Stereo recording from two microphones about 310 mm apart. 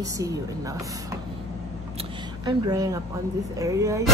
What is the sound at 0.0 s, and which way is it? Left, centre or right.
Speech, centre.